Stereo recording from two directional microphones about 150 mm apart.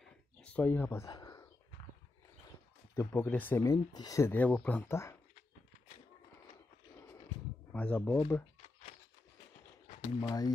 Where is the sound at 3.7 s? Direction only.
25° left (ahead or behind).